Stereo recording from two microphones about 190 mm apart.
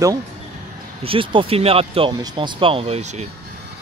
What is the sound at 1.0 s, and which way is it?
Speech, 30° right (ahead or behind).